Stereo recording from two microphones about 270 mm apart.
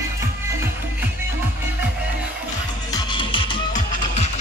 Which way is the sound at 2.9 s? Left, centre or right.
Centre.